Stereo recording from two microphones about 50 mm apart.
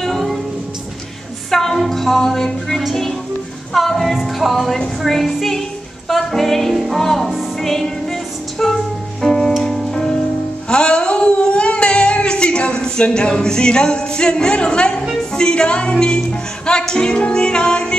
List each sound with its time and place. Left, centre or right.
0.0 s music: centre
1.5 s music: centre
10.7 s singing: centre
15.3 s music: centre